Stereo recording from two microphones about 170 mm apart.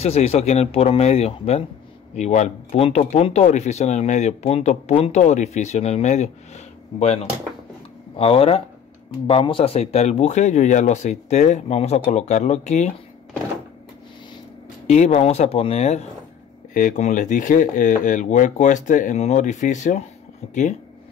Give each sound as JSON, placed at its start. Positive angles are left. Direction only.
{"t": 0.0, "sound": "speech", "side_deg": 40}
{"t": 8.2, "sound": "speech", "side_deg": 35}
{"t": 14.9, "sound": "speech", "side_deg": 40}